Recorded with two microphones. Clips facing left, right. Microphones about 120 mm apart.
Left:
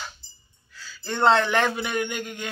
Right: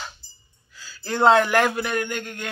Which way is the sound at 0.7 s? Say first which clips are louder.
Right 4 dB; 5° right (ahead or behind).